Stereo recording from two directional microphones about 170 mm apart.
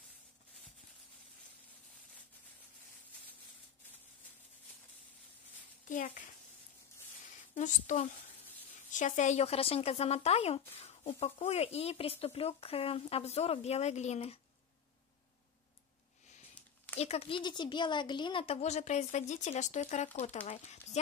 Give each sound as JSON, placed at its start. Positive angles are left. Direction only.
{"t": 5.9, "sound": "a sound", "side_deg": 50}
{"t": 7.5, "sound": "a woman's voice", "side_deg": 45}
{"t": 17.0, "sound": "speech", "side_deg": 35}